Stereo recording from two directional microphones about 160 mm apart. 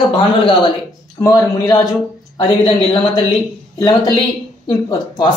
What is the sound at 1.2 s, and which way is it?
Speech, 20° left (ahead or behind).